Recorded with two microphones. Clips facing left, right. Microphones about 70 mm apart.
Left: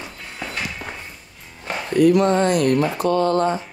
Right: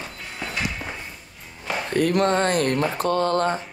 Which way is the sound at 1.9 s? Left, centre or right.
Right.